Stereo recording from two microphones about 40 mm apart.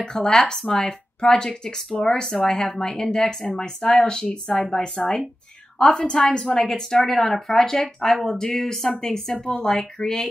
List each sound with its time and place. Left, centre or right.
0.0 s a woman's voice: centre
6.8 s speech: centre